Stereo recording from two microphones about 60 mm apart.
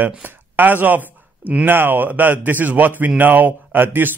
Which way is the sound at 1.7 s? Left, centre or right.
Right.